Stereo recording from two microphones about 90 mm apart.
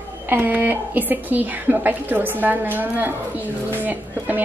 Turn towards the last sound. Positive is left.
turn(degrees=-20)  # may be behind; listen again after turning